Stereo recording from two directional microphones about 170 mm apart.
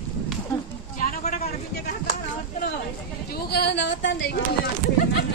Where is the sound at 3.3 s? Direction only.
65° left (ahead or behind); by 4.4 s 90° left.